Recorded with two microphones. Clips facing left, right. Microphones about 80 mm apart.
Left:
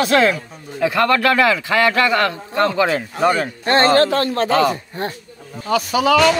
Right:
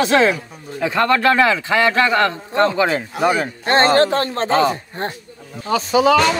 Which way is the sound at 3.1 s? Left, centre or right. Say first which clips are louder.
Left 1 dB; centre.